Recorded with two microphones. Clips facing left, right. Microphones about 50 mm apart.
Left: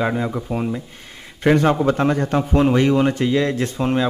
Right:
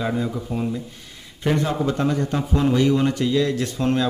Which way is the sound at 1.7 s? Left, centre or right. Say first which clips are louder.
Left 4 dB; left.